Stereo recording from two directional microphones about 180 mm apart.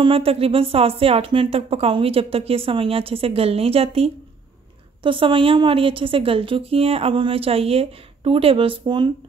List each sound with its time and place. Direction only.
0.0 s a woman's voice: 30° right (ahead or behind)